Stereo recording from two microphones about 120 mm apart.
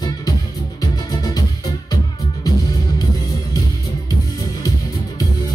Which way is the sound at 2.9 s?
30° left (ahead or behind).